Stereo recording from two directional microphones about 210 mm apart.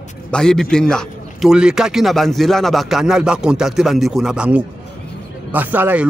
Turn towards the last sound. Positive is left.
turn(degrees=-10)  # may be behind; listen again after turning